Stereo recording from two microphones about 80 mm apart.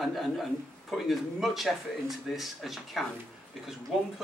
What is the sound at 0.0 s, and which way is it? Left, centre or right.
A man's voice, centre.